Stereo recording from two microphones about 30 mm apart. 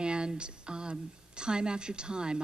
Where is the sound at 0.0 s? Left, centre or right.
Right.